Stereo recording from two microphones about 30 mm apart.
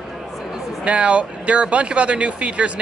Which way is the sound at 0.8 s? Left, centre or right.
Right.